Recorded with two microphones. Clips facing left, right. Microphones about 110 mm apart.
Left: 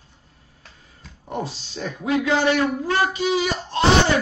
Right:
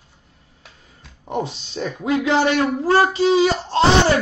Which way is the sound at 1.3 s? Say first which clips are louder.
Right 4 dB; 20° right (ahead or behind).